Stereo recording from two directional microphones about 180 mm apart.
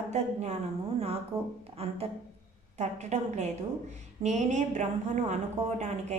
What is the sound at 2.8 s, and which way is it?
A woman's voice, 40° right (ahead or behind).